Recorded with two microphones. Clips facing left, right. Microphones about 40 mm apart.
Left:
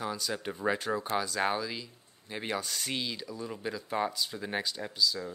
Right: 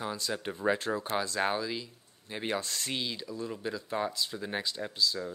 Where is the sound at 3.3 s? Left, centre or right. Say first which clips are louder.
Right 1 dB; centre.